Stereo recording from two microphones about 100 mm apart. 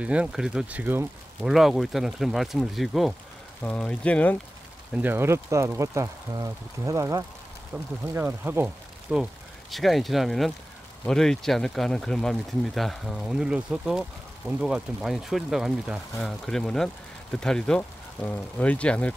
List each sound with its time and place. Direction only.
0.0 s speech: 10° right (ahead or behind)
1.4 s speech: 5° right (ahead or behind)
3.6 s speech: 10° left (ahead or behind)
4.9 s speech: 20° right (ahead or behind)
8.6 s speech: 5° right (ahead or behind); by 19.1 s 15° left (ahead or behind)